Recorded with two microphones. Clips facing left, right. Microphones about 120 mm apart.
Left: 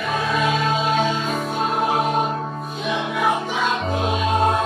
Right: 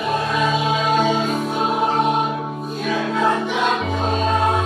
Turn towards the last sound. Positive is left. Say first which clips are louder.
# right 1 dB
turn(degrees=-40)  # may be behind; listen again after turning